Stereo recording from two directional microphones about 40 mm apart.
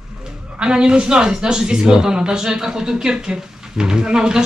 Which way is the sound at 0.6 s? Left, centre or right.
Right.